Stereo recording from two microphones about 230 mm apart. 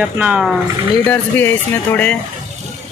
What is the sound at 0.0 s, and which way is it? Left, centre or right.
Speech, centre.